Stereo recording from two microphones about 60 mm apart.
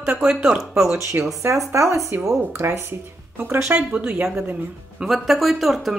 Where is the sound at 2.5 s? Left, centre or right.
Right.